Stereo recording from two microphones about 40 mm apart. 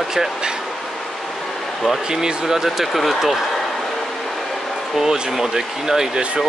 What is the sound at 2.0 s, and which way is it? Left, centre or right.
Speech, centre.